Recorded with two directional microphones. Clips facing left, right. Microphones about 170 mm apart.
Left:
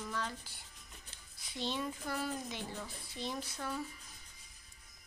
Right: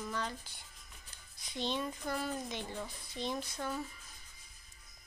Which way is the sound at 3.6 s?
15° right (ahead or behind).